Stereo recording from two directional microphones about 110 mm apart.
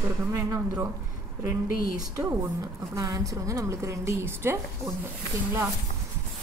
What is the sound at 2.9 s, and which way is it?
A woman's voice, 30° right (ahead or behind).